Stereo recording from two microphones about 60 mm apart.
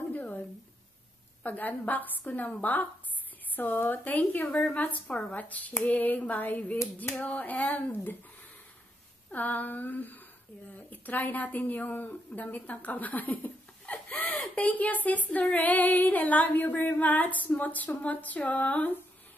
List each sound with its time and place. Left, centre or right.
0.1 s a sound: left
1.4 s female singing: left
3.5 s a woman's voice: left
4.7 s female singing: left
7.9 s a woman's voice: left
9.3 s female singing: left
14.1 s a sound: left
14.5 s female singing: left